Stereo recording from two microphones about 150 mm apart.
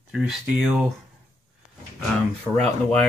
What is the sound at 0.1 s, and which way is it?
Speech, 5° right (ahead or behind).